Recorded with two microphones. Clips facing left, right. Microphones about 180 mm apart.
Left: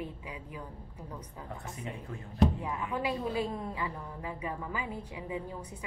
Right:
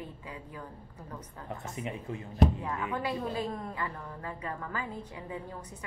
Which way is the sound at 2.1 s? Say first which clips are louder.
Right 5 dB; 20° right (ahead or behind).